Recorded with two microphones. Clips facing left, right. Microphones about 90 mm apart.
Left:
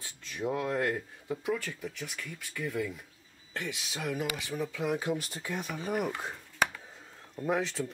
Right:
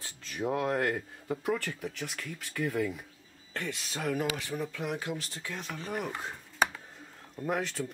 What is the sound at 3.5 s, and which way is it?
Speech, 5° left (ahead or behind).